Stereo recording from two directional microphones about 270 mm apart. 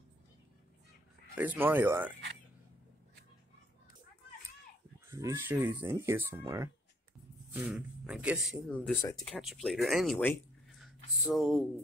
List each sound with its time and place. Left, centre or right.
1.3 s speech: centre
5.1 s speech: centre
7.7 s speech: centre